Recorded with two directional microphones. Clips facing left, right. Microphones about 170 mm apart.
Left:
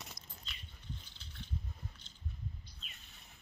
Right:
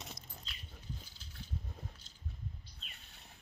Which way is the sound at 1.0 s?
5° right (ahead or behind).